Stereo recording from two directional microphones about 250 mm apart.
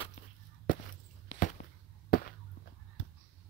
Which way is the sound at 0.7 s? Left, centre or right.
Left.